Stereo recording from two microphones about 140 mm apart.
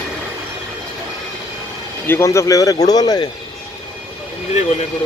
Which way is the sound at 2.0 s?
20° left (ahead or behind).